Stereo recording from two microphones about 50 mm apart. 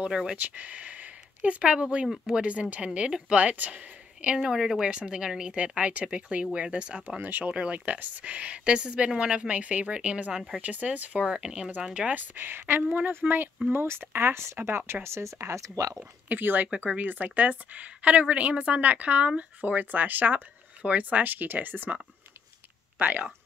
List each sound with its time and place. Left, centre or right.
0.4 s speech: right
3.3 s speech: right
4.4 s speech: centre
7.2 s speech: right
7.5 s speech: right
10.6 s speech: right
12.2 s a woman's voice: right
13.7 s speech: right
15.0 s speech: right
16.3 s speech: right
16.6 s speech: right
19.6 s speech: right
22.9 s speech: right